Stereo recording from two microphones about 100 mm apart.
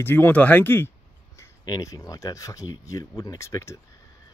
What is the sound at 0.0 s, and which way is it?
Speech, 20° left (ahead or behind).